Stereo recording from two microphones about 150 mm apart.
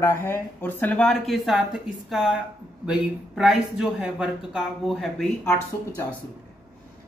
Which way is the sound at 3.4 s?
5° right (ahead or behind).